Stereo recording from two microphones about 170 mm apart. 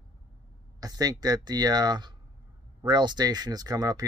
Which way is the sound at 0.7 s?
20° right (ahead or behind).